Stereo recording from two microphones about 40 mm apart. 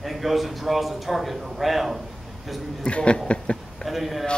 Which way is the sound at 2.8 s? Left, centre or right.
Left.